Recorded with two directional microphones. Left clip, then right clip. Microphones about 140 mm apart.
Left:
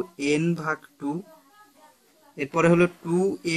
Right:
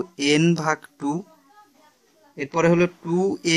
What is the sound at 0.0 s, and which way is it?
A man's voice, 55° right (ahead or behind).